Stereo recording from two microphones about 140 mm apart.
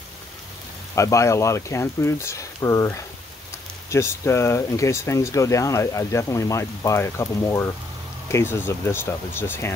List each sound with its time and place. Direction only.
0.9 s speech: 20° left (ahead or behind)